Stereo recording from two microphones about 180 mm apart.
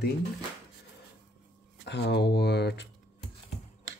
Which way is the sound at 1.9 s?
70° left (ahead or behind).